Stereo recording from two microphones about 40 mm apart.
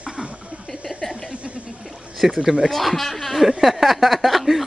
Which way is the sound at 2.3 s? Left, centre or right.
Centre.